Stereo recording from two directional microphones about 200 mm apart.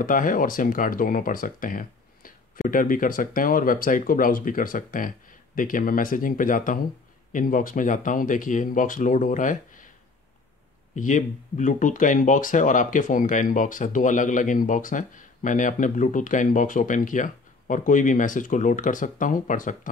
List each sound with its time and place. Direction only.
0.0 s speech: 40° left (ahead or behind)
11.0 s speech: 40° left (ahead or behind)